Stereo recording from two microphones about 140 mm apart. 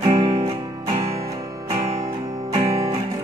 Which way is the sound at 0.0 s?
45° right (ahead or behind).